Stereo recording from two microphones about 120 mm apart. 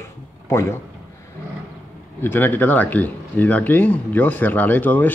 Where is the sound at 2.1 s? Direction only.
20° left (ahead or behind).